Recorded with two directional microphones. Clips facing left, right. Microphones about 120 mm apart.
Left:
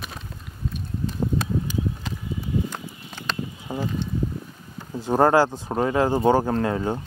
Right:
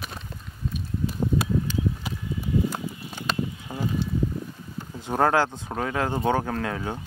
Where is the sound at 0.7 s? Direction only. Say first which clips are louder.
Even; 10° right (ahead or behind).